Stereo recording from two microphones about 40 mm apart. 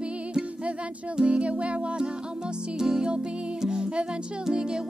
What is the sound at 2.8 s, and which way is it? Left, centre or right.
Music, centre.